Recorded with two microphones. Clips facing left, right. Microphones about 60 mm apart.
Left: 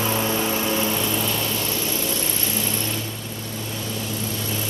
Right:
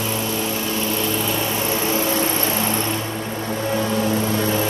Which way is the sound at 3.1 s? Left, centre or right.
Right.